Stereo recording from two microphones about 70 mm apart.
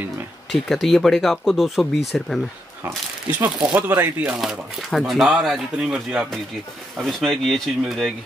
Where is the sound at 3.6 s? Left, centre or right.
Right.